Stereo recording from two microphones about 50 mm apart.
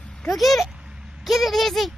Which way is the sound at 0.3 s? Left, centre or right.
Centre.